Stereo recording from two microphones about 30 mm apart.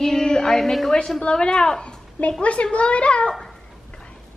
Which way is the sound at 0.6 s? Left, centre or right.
Centre.